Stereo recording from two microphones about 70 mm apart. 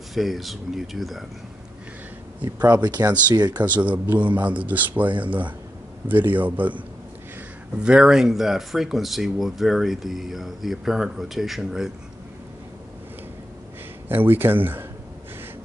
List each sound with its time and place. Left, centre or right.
0.1 s speech: centre
2.7 s speech: right
3.8 s speech: right
7.8 s speech: centre
14.0 s speech: right